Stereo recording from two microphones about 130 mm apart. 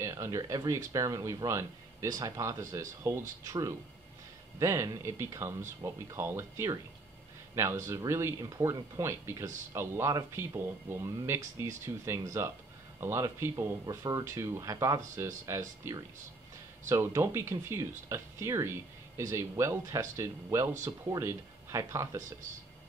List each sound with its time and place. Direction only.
0.0 s speech: 25° right (ahead or behind)